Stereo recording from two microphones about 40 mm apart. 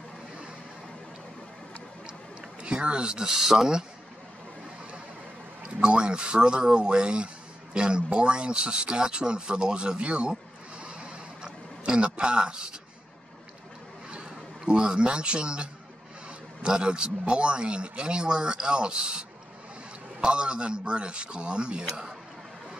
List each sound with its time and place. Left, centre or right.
2.6 s speech: right
5.8 s speech: right
10.8 s a sound: right
14.1 s speech: right